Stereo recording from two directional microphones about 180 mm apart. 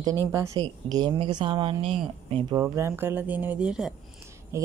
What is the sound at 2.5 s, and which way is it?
Speech, 15° right (ahead or behind).